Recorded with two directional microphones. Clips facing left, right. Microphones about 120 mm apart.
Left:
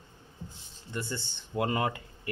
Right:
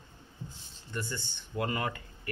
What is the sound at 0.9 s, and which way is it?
Speech, 25° left (ahead or behind).